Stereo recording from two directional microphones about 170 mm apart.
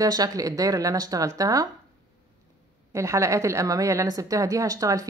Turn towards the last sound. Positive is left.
turn(degrees=-20)  # may be behind; listen again after turning